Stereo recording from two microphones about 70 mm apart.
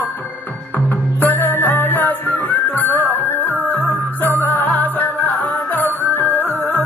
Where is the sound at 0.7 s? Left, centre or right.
Left.